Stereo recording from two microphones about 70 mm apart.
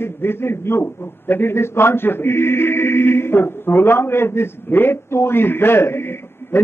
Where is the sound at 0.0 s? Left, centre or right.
Left.